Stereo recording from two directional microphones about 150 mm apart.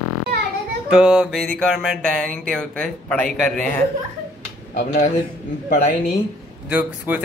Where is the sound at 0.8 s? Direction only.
5° right (ahead or behind).